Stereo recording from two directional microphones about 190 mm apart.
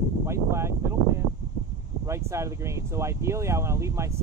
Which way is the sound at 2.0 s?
15° right (ahead or behind).